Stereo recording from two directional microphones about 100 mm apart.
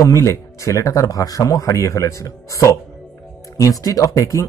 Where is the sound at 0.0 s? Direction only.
30° left (ahead or behind).